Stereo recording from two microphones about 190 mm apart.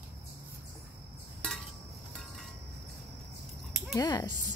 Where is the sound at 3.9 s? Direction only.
20° left (ahead or behind).